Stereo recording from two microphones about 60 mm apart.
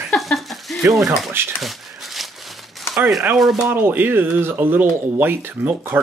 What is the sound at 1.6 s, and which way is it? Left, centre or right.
Crumpling, centre.